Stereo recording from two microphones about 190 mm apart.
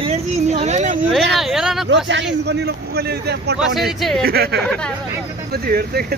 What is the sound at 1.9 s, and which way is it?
A man's voice, 70° right (ahead or behind).